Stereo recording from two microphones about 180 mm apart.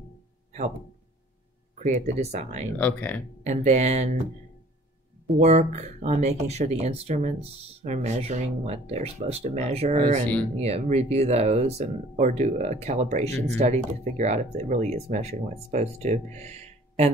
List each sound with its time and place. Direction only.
1.8 s speech: 40° right (ahead or behind)
2.8 s speech: 10° left (ahead or behind)
3.4 s speech: 40° right (ahead or behind)
5.4 s speech: 40° right (ahead or behind)
13.2 s speech: 15° left (ahead or behind)
13.6 s speech: 40° right (ahead or behind)